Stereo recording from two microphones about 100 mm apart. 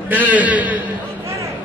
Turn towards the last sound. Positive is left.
turn(degrees=-15)  # may be behind; listen again after turning